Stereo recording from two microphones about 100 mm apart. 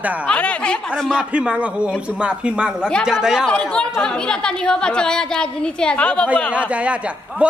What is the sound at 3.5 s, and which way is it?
A woman's voice, 10° left (ahead or behind).